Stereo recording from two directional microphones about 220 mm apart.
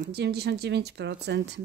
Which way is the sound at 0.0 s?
45° right (ahead or behind).